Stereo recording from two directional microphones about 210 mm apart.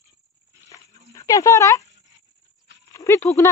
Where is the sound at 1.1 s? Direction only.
15° left (ahead or behind).